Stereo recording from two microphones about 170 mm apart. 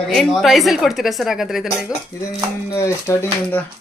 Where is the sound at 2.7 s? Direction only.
15° left (ahead or behind).